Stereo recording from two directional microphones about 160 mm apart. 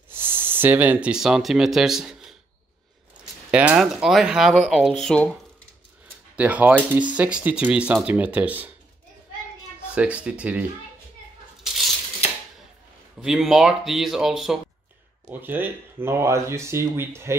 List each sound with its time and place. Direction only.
0.1 s speech: 15° right (ahead or behind)
3.5 s speech: 5° right (ahead or behind)
6.3 s speech: 10° right (ahead or behind)
9.9 s speech: 5° right (ahead or behind)
13.2 s speech: 5° right (ahead or behind)
15.2 s speech: 10° right (ahead or behind)